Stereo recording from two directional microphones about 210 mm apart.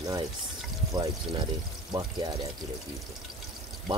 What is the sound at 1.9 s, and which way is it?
Speech, 20° right (ahead or behind).